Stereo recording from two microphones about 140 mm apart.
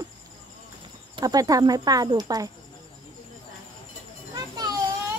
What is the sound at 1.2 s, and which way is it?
Speech, 25° right (ahead or behind).